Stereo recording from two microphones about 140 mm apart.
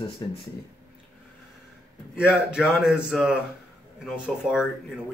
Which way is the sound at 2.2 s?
5° right (ahead or behind).